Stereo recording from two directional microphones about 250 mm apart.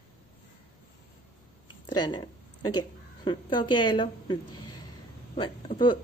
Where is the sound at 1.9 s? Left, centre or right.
Centre.